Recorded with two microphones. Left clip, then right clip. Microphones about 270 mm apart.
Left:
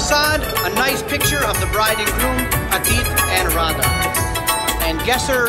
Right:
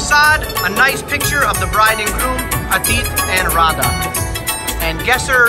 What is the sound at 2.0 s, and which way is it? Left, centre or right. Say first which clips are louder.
Speech: right 1 dB; centre.